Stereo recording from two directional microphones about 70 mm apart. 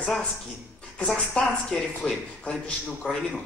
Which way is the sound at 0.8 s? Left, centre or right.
Centre.